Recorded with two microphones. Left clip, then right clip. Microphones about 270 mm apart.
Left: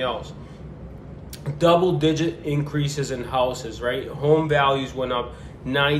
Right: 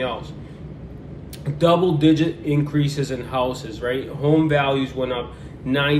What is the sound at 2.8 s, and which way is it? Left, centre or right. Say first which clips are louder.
Speech: right 2 dB; left.